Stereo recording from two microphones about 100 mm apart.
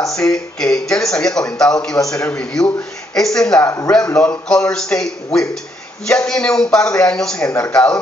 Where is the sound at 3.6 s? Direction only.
25° left (ahead or behind).